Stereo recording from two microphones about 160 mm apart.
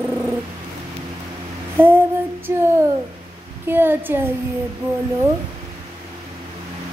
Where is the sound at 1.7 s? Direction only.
15° right (ahead or behind).